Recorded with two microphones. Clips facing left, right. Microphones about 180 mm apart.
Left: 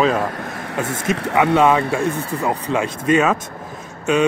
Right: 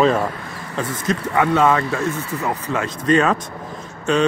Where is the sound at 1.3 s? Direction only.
15° left (ahead or behind).